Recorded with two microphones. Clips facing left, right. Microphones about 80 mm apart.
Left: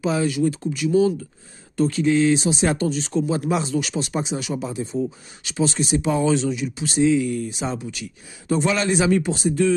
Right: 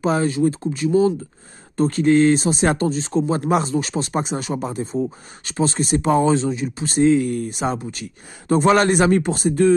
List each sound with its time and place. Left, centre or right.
0.0 s speech: right
1.8 s speech: right
2.9 s speech: right